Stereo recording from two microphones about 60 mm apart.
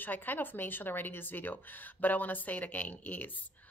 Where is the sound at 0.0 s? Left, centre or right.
Left.